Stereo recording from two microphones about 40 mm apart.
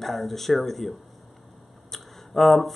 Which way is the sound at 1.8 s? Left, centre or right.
Centre.